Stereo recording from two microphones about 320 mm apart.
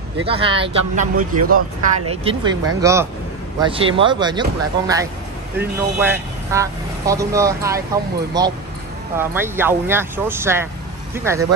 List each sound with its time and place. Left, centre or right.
0.2 s speech: centre
2.2 s speech: centre